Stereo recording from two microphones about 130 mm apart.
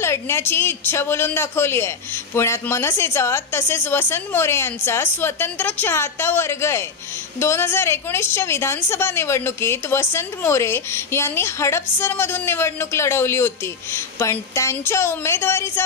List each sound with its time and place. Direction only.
0.0 s a woman's voice: 20° left (ahead or behind)